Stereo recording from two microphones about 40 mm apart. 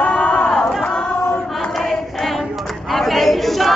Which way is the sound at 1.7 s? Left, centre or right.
Centre.